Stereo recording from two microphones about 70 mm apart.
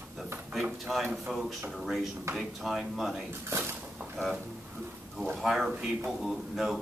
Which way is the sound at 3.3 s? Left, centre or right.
Right.